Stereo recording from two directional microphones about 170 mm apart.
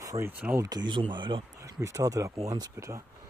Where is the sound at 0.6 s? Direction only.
25° right (ahead or behind).